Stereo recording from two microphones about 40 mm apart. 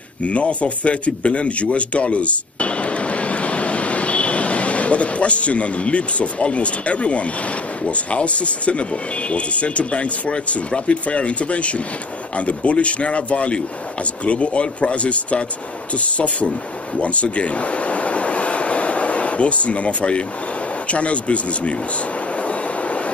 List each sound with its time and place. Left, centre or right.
0.2 s speech: left
17.0 s air conditioning: left
20.8 s speech: left
22.4 s train: left